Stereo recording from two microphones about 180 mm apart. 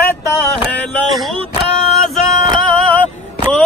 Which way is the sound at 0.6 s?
5° left (ahead or behind).